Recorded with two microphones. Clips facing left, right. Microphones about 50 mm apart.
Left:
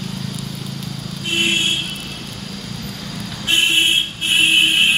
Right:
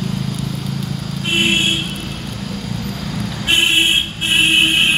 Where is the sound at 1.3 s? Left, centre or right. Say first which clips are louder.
Right 2 dB; right.